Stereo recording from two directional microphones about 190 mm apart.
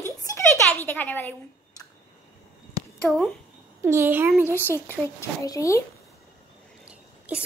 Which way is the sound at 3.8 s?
10° right (ahead or behind).